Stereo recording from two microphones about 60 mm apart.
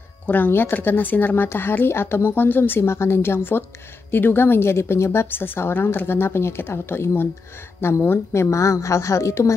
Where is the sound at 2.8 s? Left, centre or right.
Left.